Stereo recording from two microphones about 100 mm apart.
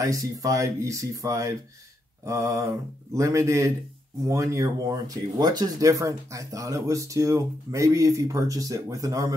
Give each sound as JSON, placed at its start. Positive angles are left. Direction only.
{"t": 0.0, "sound": "speech", "side_deg": -35}